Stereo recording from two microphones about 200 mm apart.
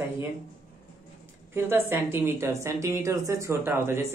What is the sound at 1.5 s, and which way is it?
A woman's voice, 10° right (ahead or behind).